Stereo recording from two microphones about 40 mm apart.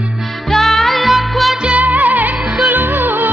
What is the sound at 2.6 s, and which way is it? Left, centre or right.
Music, right.